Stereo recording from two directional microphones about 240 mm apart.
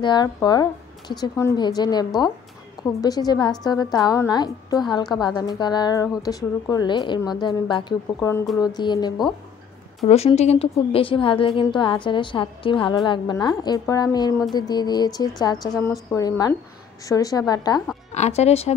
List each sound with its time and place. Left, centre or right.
0.0 s a woman's voice: centre
18.1 s speech: left